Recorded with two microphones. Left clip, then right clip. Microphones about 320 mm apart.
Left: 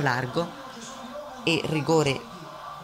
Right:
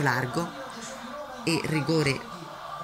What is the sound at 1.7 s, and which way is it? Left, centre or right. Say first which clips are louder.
Speech: left 3 dB; left.